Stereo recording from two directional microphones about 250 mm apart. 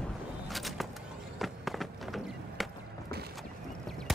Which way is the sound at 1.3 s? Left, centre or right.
Centre.